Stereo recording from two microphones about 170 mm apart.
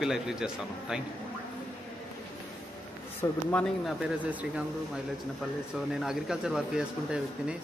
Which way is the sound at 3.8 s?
10° right (ahead or behind).